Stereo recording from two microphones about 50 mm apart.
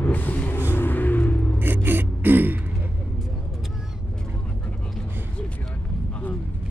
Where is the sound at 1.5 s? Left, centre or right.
Right.